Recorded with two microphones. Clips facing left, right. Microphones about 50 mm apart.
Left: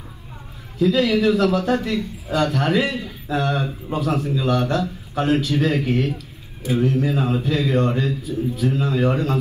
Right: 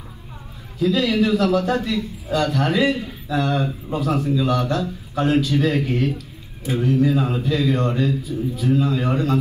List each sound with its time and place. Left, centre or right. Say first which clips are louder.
0.7 s a man's voice: left 1 dB; left